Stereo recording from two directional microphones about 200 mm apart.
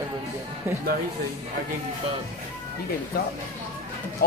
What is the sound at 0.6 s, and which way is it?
Speech, 15° right (ahead or behind).